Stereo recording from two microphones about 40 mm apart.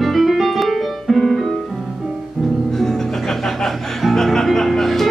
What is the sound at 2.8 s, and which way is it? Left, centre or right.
Music, centre.